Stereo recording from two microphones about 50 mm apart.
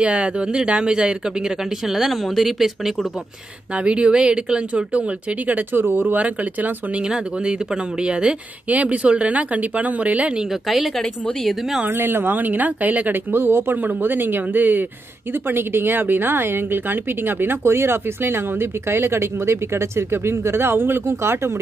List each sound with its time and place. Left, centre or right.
0.0 s speech: right
1.9 s speech: centre
3.7 s speech: right
5.7 s speech: right
7.0 s speech: centre
11.9 s speech: right
13.3 s speech: right